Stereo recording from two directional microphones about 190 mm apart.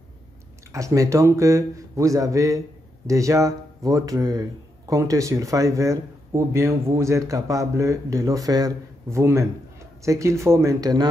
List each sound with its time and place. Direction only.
0.7 s speech: 15° right (ahead or behind)